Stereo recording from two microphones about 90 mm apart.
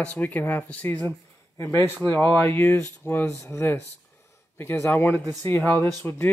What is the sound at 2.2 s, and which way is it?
Speech, 30° left (ahead or behind).